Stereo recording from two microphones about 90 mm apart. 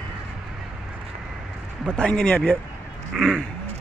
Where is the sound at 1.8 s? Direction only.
10° left (ahead or behind).